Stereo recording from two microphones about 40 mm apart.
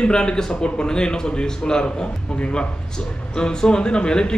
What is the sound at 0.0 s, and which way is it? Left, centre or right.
Speech, left.